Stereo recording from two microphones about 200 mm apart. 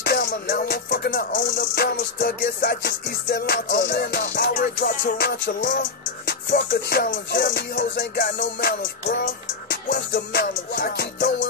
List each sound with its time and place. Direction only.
0.0 s music: 50° left (ahead or behind)
4.3 s music: 40° left (ahead or behind)